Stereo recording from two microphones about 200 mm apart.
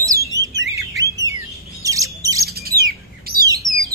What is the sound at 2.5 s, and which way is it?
Bird, 50° right (ahead or behind).